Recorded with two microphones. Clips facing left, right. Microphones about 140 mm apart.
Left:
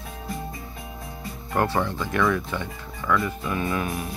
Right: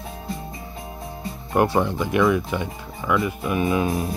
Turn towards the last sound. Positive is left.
turn(degrees=-25)  # may be behind; listen again after turning